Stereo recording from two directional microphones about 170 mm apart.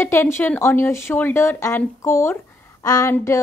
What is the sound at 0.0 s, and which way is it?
Speech, 15° left (ahead or behind).